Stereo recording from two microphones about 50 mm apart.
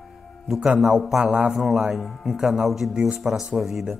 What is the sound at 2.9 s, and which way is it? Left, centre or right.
Speech, centre.